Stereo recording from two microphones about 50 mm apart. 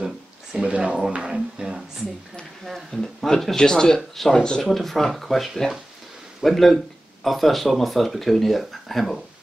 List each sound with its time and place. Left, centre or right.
0.0 s a sound: centre
1.2 s speech: centre
2.6 s speech: centre
4.6 s speech: centre